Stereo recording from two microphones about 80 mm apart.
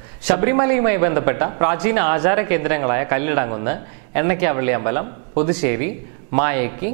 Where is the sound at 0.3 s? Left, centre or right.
Centre.